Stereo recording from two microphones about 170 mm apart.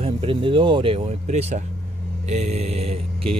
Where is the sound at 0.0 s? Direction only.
30° right (ahead or behind).